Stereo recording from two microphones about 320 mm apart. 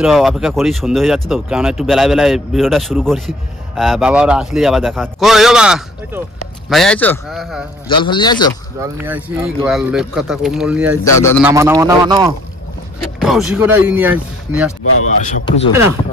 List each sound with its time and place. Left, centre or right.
0.0 s speech: centre
7.9 s a man's voice: centre
8.7 s speech: centre
11.1 s a man's voice: centre
11.4 s speech: centre
13.2 s speech: centre
15.2 s speech: left